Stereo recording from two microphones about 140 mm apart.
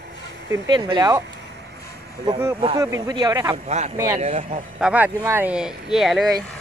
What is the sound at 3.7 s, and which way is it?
Speech, 55° right (ahead or behind).